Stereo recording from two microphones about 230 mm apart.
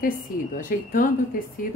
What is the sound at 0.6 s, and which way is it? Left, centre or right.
Speech, left.